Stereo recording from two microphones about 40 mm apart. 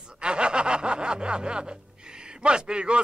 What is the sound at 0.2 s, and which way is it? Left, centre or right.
Music, right.